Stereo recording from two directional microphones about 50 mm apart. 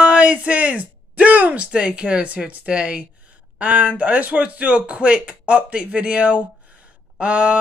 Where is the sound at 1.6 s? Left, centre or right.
Right.